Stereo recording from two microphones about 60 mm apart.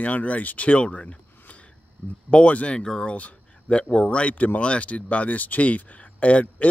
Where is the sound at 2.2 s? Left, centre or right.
Centre.